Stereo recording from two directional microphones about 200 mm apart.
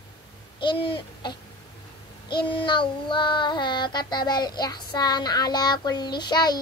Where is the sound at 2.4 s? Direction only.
25° left (ahead or behind).